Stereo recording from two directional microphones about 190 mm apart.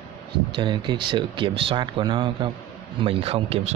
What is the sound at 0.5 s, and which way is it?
Speech, 25° right (ahead or behind).